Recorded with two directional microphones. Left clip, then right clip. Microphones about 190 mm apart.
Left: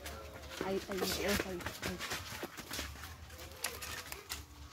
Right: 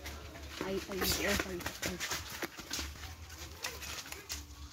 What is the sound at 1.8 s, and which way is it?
Speech, 40° right (ahead or behind).